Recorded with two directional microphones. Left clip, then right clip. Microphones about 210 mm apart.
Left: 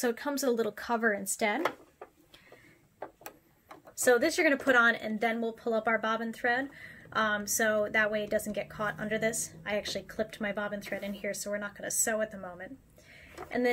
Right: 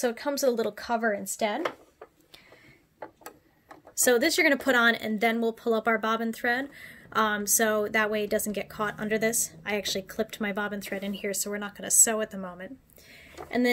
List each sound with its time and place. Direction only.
0.0 s speech: 20° right (ahead or behind)
3.9 s speech: 45° right (ahead or behind)